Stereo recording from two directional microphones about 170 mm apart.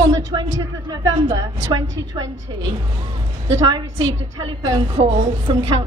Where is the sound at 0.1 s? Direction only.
20° right (ahead or behind).